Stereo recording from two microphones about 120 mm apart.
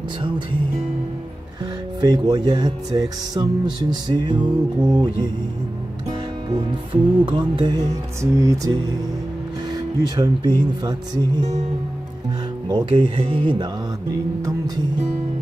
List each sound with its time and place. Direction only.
2.0 s music: 35° right (ahead or behind)
6.5 s music: 40° right (ahead or behind); by 8.7 s 25° right (ahead or behind)
10.0 s music: 35° right (ahead or behind)
12.6 s speech: 40° right (ahead or behind)